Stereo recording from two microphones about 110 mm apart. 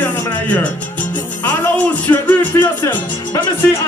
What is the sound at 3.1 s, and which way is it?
Speech, 40° left (ahead or behind).